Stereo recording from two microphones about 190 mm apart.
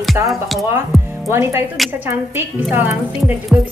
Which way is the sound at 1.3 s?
15° right (ahead or behind).